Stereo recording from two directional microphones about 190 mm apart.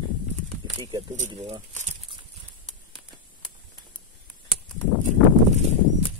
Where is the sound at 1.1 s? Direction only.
40° right (ahead or behind).